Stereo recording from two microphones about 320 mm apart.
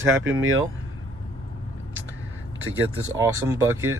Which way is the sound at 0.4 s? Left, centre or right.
Right.